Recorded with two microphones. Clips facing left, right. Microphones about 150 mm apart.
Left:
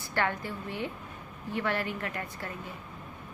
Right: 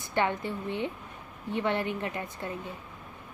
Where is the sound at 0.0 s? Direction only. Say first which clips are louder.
Right 2 dB; 20° right (ahead or behind).